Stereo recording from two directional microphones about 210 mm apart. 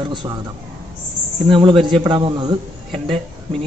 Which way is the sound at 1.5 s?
25° right (ahead or behind).